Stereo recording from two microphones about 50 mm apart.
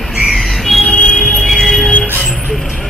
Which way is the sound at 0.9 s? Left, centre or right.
Left.